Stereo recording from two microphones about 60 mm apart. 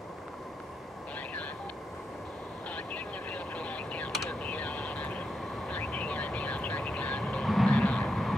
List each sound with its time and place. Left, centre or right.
2.7 s vehicle: left
8.1 s vehicle: centre